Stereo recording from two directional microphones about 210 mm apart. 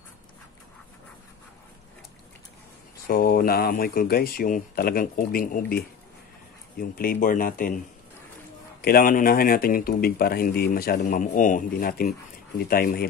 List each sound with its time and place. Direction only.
3.1 s speech: 40° left (ahead or behind)
6.8 s speech: 45° left (ahead or behind)
8.8 s speech: 45° left (ahead or behind)